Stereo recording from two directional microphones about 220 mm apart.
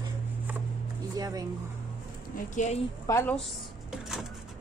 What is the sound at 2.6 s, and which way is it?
Speech, 35° left (ahead or behind).